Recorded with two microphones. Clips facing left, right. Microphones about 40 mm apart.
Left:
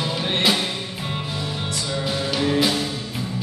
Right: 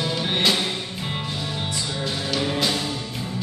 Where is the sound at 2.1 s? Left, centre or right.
Centre.